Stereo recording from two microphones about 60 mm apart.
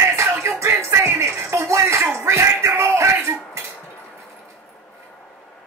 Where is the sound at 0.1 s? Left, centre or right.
Right.